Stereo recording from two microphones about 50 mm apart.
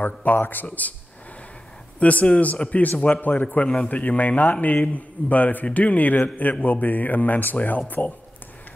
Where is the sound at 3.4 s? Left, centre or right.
Left.